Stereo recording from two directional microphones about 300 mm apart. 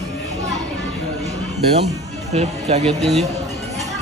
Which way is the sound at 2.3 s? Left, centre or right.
Right.